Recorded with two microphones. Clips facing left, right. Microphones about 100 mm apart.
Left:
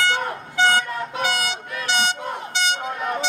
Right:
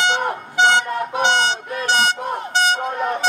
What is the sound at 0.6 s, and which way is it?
Toot, 25° right (ahead or behind).